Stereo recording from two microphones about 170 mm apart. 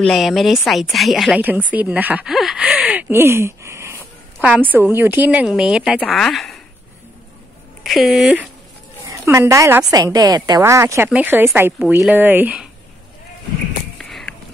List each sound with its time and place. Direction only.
0.0 s a woman's voice: centre (ahead or behind)
7.8 s a woman's voice: centre (ahead or behind)
9.0 s speech: 15° right (ahead or behind)
13.9 s a sound: centre (ahead or behind)